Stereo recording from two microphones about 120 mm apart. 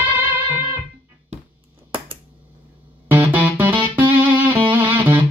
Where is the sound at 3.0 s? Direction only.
15° right (ahead or behind).